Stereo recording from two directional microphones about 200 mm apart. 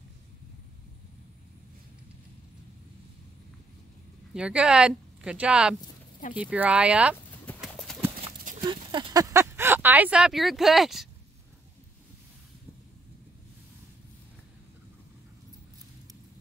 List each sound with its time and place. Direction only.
4.3 s speech: 5° right (ahead or behind)
7.6 s clip-clop: centre (ahead or behind)
8.6 s a sound: 20° right (ahead or behind); by 11.1 s centre (ahead or behind)